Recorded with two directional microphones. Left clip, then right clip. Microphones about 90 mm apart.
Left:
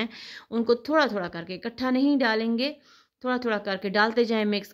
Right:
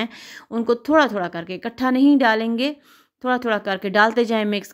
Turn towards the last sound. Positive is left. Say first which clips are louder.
# right 4 dB
turn(degrees=-40)  # may be behind; listen again after turning